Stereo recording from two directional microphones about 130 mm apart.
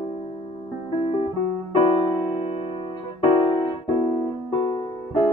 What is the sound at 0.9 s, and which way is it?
Music, 45° left (ahead or behind).